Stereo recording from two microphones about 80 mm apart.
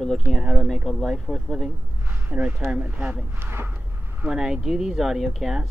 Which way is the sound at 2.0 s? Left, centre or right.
Right.